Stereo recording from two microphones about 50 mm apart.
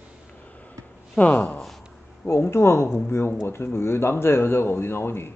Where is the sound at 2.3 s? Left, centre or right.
Left.